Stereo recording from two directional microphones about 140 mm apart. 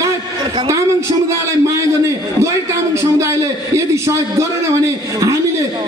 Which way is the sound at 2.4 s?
20° right (ahead or behind).